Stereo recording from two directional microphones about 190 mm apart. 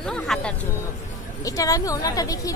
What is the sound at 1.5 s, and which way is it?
A woman's voice, 20° left (ahead or behind).